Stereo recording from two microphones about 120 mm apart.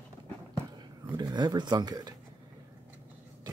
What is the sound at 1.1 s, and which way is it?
Speech, 35° right (ahead or behind).